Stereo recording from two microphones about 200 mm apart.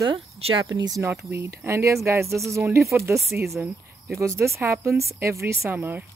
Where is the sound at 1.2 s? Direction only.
10° right (ahead or behind).